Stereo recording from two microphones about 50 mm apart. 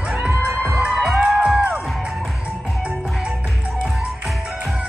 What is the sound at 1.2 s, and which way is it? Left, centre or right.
Music, centre.